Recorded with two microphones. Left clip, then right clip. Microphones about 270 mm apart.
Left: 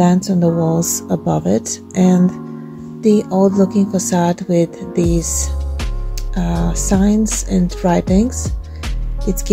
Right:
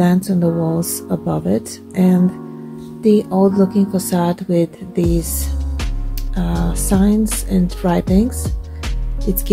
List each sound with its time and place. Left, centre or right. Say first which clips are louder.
0.0 s speech: left 2 dB; centre
6.3 s speech: left 2 dB; centre